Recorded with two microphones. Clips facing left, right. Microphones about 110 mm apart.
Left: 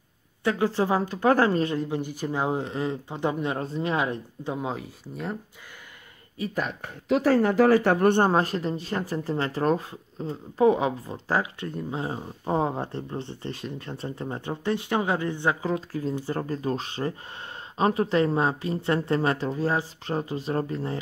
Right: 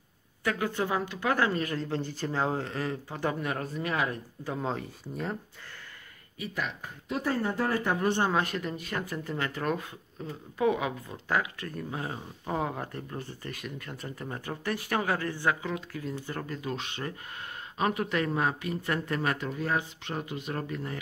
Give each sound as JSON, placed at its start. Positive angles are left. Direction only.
{"t": 0.4, "sound": "speech", "side_deg": 25}
{"t": 1.7, "sound": "speech", "side_deg": 15}
{"t": 4.6, "sound": "speech", "side_deg": 5}
{"t": 6.3, "sound": "speech", "side_deg": 40}
{"t": 6.8, "sound": "speech", "side_deg": 90}
{"t": 8.3, "sound": "speech", "side_deg": 35}
{"t": 15.6, "sound": "speech", "side_deg": 30}